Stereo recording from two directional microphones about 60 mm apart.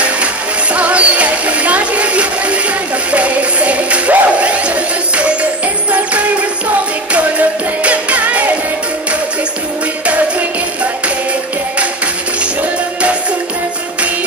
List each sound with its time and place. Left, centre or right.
0.7 s music: right